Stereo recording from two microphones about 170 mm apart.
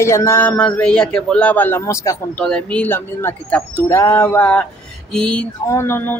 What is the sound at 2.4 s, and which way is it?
Speech, 5° left (ahead or behind).